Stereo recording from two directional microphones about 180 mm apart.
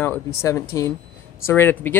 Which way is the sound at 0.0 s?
15° left (ahead or behind).